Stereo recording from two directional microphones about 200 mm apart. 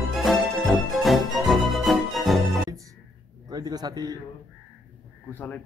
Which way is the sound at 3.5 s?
20° right (ahead or behind).